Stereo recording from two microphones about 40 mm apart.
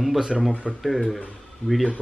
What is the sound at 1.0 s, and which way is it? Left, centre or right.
Speech, centre.